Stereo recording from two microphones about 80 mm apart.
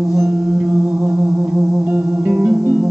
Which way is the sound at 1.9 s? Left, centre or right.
Right.